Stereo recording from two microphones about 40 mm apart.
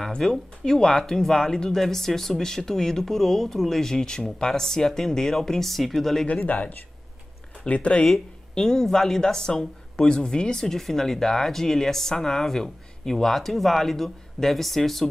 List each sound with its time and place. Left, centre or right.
0.0 s speech: centre
6.4 s speech: left
8.1 s speech: centre